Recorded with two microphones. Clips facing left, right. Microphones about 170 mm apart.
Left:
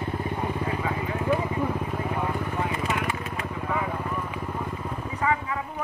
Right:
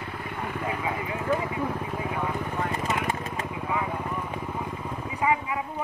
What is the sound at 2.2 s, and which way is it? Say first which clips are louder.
Vehicle: even; 10° left (ahead or behind).